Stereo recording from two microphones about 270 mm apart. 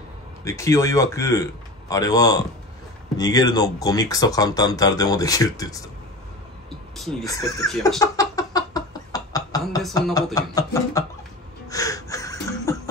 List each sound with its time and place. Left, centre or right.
0.4 s speech: centre
7.0 s speech: centre
7.2 s speech: centre
8.0 s a sound: centre
10.1 s speech: centre
11.7 s a sound: centre